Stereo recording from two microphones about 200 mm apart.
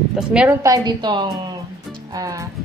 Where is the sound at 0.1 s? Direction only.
5° right (ahead or behind).